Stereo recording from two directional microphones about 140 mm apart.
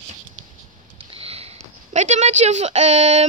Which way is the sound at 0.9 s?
45° right (ahead or behind).